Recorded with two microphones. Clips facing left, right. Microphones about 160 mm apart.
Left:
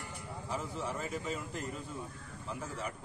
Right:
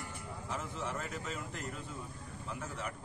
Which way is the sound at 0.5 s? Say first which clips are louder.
Left 2 dB; centre (ahead or behind).